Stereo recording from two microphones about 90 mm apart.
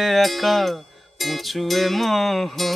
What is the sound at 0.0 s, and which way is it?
Music, centre (ahead or behind).